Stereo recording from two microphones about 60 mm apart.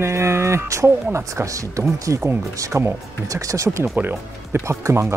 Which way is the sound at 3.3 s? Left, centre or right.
Right.